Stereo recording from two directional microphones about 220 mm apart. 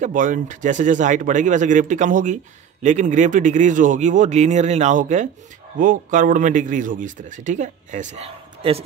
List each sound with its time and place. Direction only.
0.0 s speech: 35° right (ahead or behind)